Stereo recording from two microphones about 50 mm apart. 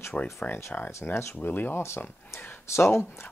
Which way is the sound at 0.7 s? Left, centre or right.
Left.